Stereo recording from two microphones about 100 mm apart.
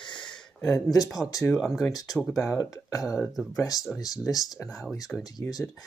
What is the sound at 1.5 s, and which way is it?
Speech, centre (ahead or behind).